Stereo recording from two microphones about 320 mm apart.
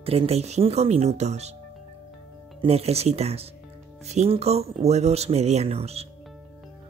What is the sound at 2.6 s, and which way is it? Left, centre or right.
Speech, centre.